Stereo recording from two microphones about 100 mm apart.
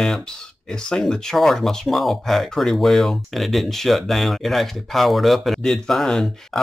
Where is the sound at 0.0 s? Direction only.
5° left (ahead or behind).